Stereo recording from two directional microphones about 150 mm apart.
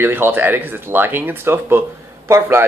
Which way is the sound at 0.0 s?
15° right (ahead or behind).